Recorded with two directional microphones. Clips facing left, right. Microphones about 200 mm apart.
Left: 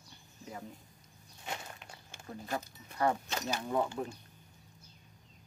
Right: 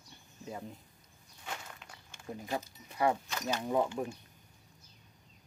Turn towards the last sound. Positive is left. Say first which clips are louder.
# right 2 dB
turn(degrees=-15)  # may be behind; listen again after turning